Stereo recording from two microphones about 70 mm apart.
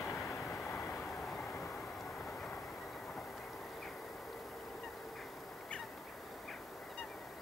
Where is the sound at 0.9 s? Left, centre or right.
Centre.